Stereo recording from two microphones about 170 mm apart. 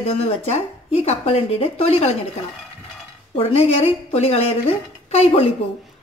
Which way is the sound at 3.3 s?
35° left (ahead or behind).